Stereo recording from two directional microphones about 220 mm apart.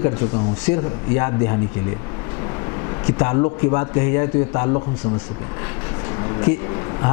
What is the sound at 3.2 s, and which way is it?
A man's voice, 20° left (ahead or behind).